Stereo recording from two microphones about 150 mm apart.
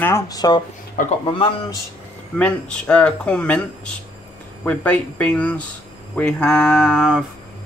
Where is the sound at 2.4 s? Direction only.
10° left (ahead or behind).